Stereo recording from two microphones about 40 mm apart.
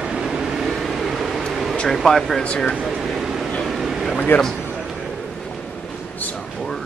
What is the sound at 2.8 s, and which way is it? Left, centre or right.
Air conditioning, centre.